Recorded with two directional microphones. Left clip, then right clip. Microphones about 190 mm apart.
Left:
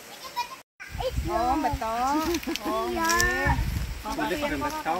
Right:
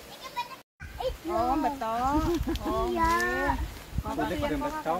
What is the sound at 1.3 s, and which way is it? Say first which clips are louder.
Speech: left 2 dB; 5° left (ahead or behind).